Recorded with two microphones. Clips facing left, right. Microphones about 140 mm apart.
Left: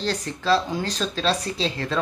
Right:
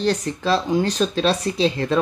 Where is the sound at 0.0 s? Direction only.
15° right (ahead or behind).